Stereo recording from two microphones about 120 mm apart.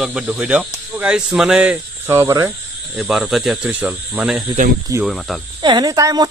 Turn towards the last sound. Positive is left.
turn(degrees=-30)  # may be behind; listen again after turning